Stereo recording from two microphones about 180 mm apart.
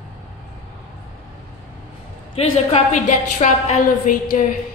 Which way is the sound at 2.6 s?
40° left (ahead or behind).